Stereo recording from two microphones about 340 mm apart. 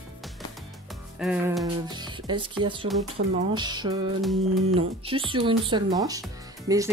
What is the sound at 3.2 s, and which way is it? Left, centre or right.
Speech, right.